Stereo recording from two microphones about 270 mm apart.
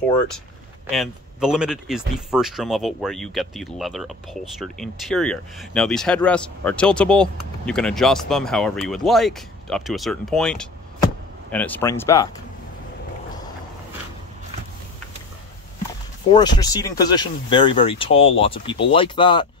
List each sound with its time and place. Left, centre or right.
0.9 s speech: centre
16.3 s speech: centre